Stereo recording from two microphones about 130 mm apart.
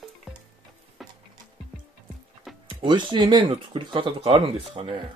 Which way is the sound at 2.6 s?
35° right (ahead or behind).